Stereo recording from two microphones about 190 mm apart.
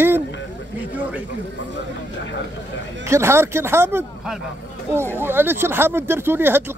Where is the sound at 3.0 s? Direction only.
15° right (ahead or behind).